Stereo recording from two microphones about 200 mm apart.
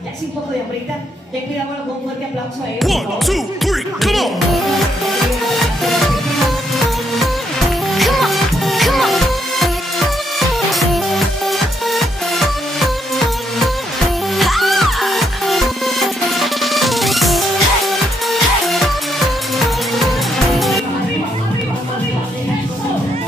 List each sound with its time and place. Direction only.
2.8 s music: centre (ahead or behind)